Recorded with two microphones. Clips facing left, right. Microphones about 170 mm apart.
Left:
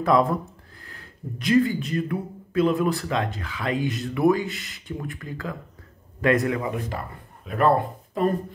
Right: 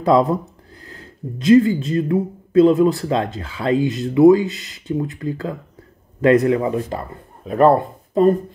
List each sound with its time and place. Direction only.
0.0 s speech: 25° right (ahead or behind)